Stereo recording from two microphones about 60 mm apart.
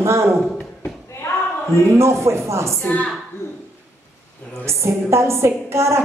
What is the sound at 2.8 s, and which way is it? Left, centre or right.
Speech, left.